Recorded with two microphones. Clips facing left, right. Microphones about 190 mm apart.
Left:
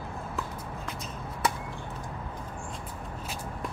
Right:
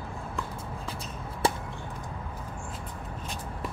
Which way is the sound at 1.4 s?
30° right (ahead or behind).